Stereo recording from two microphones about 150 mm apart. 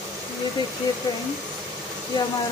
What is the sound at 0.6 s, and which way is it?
Speech, 30° left (ahead or behind).